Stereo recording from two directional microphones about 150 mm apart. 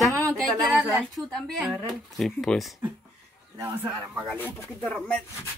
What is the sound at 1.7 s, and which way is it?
Speech, centre (ahead or behind).